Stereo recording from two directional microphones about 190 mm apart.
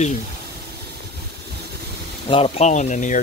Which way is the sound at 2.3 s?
35° left (ahead or behind).